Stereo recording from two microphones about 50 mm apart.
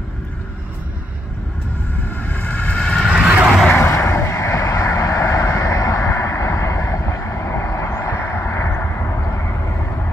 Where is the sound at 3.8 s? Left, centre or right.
Left.